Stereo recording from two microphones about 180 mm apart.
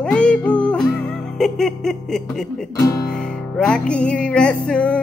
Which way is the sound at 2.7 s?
20° left (ahead or behind).